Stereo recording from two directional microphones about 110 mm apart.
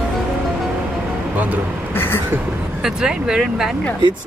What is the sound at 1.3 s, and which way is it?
Speech, 15° right (ahead or behind).